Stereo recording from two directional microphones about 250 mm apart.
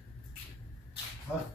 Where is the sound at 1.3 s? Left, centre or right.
Centre.